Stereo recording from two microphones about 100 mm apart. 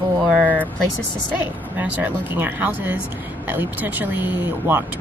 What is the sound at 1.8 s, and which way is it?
Speech, 15° right (ahead or behind).